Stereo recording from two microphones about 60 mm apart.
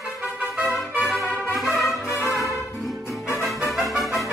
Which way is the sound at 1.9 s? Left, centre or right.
Left.